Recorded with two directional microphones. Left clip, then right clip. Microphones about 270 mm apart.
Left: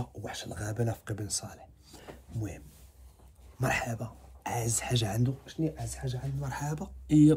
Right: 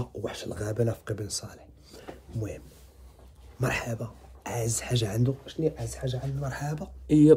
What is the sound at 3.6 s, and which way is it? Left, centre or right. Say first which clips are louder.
Speech: right 1 dB; centre.